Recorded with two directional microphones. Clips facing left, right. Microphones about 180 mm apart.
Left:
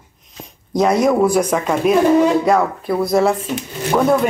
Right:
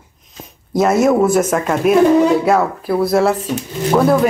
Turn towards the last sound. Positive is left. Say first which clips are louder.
# right 2 dB
turn(degrees=-5)  # may be behind; listen again after turning